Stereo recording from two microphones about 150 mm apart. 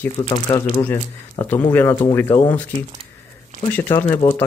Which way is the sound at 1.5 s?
10° left (ahead or behind).